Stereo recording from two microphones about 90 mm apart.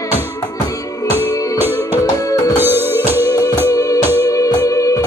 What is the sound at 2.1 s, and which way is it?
Music, 40° left (ahead or behind).